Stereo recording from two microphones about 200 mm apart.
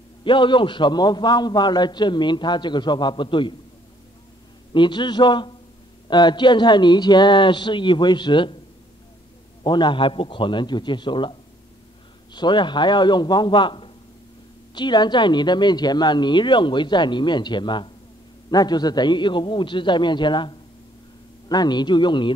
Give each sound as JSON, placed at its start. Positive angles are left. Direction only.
{"t": 0.2, "sound": "a man's voice", "side_deg": 25}
{"t": 4.7, "sound": "a man's voice", "side_deg": 25}
{"t": 9.6, "sound": "a man's voice", "side_deg": 20}